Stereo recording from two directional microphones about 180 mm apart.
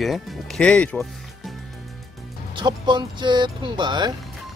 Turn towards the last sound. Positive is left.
turn(degrees=-25)  # may be behind; listen again after turning